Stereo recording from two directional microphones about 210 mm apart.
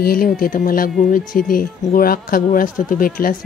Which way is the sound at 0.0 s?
45° left (ahead or behind).